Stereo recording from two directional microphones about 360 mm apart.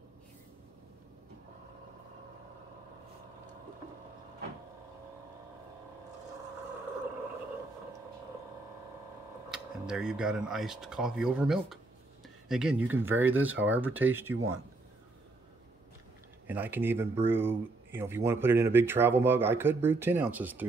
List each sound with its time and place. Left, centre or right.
9.5 s speech: centre
14.3 s speech: right
16.4 s speech: centre